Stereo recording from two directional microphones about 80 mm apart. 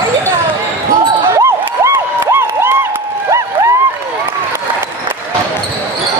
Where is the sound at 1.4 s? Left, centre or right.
Right.